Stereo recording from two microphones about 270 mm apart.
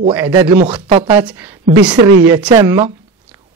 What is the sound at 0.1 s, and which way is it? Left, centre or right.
Speech, centre.